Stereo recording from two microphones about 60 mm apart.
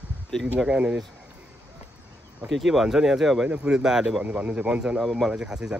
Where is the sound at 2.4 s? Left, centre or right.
Centre.